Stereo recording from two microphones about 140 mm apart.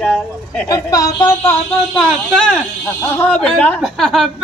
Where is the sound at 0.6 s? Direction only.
25° left (ahead or behind).